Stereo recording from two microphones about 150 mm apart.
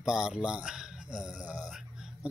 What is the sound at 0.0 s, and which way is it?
Speech, 5° right (ahead or behind).